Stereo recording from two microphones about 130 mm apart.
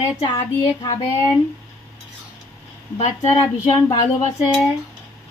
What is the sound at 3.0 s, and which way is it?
Speech, 60° left (ahead or behind).